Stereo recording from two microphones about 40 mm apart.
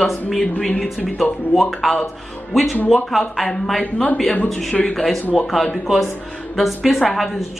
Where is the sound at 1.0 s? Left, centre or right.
Centre.